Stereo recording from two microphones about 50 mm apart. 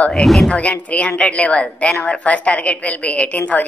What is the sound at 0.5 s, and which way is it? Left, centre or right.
A woman's voice, left.